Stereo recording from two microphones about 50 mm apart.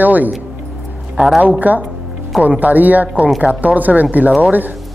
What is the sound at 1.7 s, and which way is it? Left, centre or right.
Speech, right.